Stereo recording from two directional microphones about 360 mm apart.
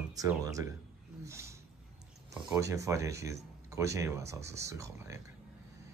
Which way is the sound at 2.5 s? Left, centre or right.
Centre.